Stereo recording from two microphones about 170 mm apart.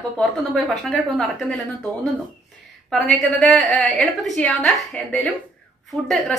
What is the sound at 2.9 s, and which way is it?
A woman's voice, 5° left (ahead or behind).